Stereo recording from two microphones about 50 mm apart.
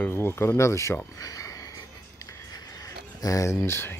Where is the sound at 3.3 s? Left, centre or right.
Left.